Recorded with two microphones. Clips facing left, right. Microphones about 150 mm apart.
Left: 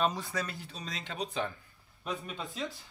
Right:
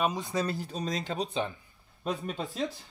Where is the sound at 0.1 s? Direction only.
20° right (ahead or behind).